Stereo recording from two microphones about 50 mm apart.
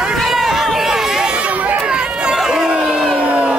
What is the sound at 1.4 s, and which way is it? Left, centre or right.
Run, right.